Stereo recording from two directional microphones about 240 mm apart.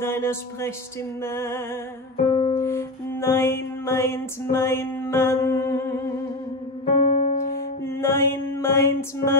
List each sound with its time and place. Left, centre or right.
0.0 s speech: centre
2.5 s music: centre
6.9 s music: left
7.8 s music: centre